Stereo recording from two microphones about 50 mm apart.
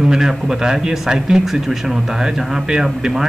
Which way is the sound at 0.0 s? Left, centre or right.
Centre.